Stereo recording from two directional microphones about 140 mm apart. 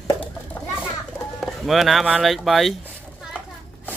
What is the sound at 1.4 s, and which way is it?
Speech, centre (ahead or behind).